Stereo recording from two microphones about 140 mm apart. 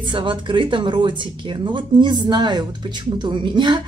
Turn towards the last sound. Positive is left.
turn(degrees=-35)  # may be behind; listen again after turning